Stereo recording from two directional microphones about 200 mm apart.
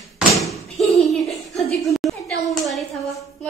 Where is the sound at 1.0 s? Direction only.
Centre (ahead or behind).